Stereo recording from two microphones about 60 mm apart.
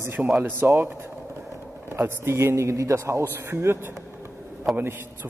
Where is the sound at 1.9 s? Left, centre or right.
Right.